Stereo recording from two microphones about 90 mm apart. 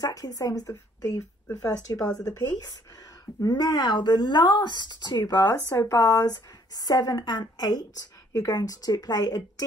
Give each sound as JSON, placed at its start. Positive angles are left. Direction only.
{"t": 0.0, "sound": "speech", "side_deg": 40}